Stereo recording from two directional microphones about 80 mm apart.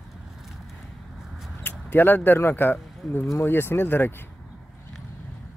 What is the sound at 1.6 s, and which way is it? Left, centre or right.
Speech, left.